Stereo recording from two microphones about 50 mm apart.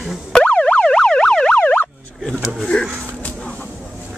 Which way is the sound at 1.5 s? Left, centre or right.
Left.